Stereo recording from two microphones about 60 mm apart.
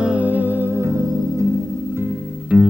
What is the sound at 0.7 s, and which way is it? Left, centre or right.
Music, right.